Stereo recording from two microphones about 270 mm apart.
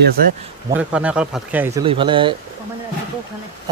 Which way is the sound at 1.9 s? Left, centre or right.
Centre.